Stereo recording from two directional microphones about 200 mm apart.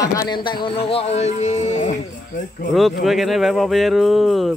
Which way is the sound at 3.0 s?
Centre (ahead or behind).